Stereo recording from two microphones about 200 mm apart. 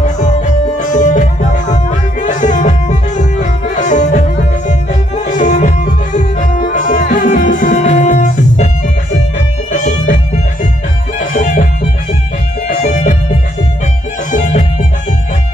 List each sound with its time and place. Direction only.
0.0 s music: 35° left (ahead or behind)
12.6 s music: 35° left (ahead or behind)
14.3 s music: 40° left (ahead or behind)